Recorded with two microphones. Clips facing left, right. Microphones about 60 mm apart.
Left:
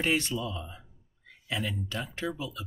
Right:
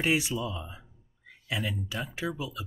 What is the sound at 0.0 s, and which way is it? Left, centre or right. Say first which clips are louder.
Speech: right 1 dB; centre.